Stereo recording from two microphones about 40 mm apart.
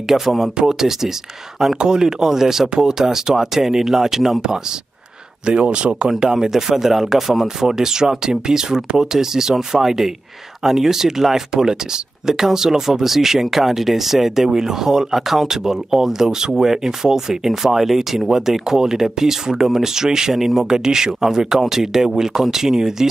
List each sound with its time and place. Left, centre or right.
0.1 s speech: centre
5.4 s speech: right
6.0 s speech: centre